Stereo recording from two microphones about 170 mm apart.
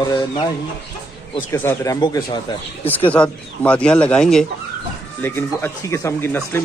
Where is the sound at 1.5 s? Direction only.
15° left (ahead or behind).